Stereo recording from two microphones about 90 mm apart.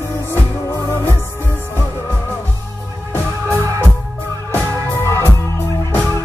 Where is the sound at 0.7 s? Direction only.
25° left (ahead or behind).